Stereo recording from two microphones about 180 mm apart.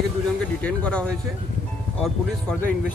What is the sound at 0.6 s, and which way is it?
Speech, 5° left (ahead or behind).